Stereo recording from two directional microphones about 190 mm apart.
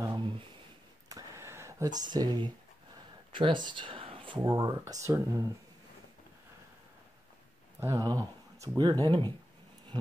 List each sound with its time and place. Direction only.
0.0 s a sound: 20° right (ahead or behind)
3.3 s speech: 25° right (ahead or behind)
7.8 s speech: 20° right (ahead or behind)